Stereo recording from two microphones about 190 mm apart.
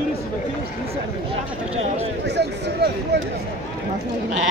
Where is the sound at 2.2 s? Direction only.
65° right (ahead or behind).